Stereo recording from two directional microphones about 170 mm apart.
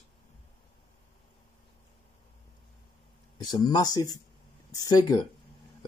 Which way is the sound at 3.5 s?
25° left (ahead or behind).